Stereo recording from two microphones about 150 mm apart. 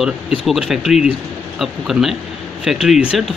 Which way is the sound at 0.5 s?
5° right (ahead or behind).